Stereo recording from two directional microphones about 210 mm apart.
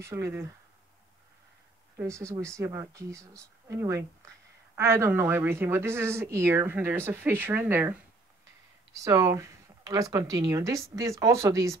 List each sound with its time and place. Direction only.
0.0 s speech: 15° right (ahead or behind)
2.0 s speech: 15° right (ahead or behind)